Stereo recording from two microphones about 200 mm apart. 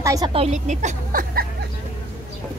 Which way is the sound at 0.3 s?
35° right (ahead or behind).